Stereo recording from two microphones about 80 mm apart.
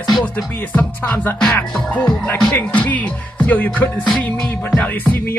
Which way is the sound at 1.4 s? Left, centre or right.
Centre.